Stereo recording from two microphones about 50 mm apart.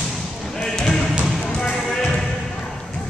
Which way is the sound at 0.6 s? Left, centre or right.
Centre.